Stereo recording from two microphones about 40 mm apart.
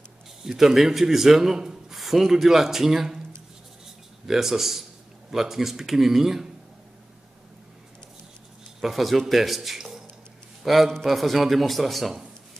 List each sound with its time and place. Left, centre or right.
0.4 s a man's voice: centre
4.3 s a man's voice: centre
8.8 s a man's voice: centre